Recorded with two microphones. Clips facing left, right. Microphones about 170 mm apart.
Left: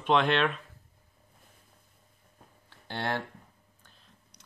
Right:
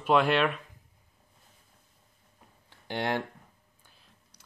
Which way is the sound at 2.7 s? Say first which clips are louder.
Right 2 dB; 15° right (ahead or behind).